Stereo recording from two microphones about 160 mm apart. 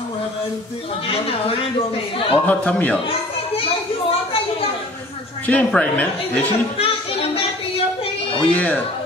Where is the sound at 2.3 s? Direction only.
10° left (ahead or behind).